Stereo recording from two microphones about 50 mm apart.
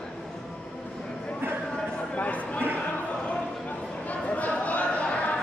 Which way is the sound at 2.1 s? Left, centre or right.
Left.